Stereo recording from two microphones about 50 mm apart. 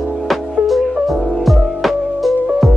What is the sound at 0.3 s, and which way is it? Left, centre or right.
Music, centre.